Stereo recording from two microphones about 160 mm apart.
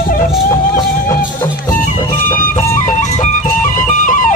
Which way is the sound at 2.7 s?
50° left (ahead or behind).